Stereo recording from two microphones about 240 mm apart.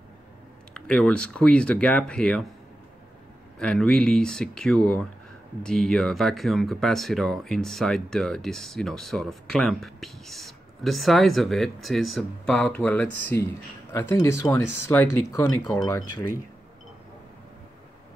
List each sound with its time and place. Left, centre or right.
0.7 s speech: centre
3.5 s speech: centre